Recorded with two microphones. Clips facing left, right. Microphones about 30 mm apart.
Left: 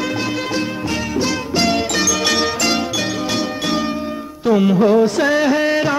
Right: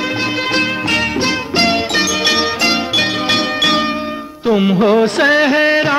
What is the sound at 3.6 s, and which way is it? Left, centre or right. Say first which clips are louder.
Music: right 6 dB; right.